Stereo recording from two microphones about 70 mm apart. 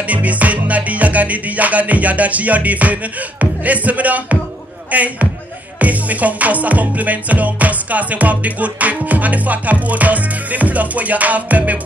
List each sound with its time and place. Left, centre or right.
0.0 s music: right